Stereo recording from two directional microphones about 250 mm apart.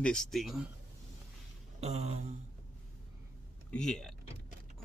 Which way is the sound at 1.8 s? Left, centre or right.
Right.